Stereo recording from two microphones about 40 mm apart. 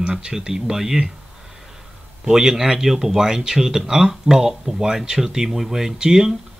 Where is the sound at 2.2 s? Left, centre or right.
Centre.